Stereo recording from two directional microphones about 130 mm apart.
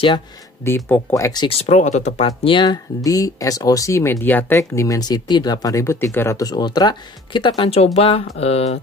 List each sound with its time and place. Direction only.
0.7 s speech: 15° left (ahead or behind)
1.5 s speech: 55° left (ahead or behind)
2.4 s speech: 35° left (ahead or behind); by 8.7 s 50° left (ahead or behind)